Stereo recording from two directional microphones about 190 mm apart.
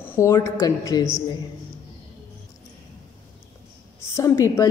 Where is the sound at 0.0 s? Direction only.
15° left (ahead or behind).